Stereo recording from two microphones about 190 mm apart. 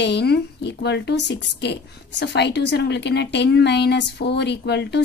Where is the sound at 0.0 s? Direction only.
60° left (ahead or behind).